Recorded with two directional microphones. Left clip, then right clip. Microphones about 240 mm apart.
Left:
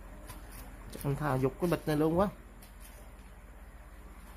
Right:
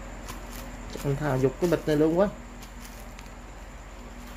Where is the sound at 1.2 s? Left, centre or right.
Left.